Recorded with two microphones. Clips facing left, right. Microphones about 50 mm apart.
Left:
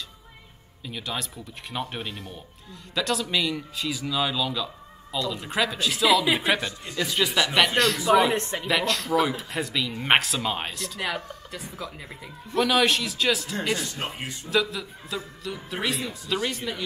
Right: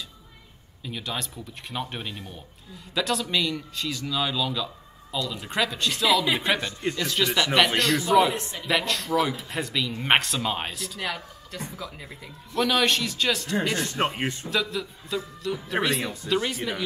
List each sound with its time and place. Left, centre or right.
0.8 s speech: centre
8.3 s speech: left
8.6 s speech: centre
14.0 s speech: right
14.5 s speech: centre